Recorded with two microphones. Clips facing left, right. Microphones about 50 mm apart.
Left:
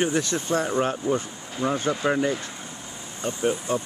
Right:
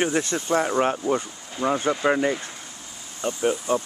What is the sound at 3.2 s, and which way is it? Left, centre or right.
Speech, right.